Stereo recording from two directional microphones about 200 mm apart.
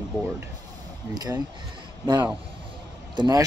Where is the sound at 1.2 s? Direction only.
20° right (ahead or behind).